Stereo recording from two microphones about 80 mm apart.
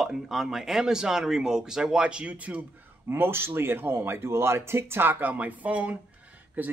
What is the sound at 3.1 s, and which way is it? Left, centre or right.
A man's voice, right.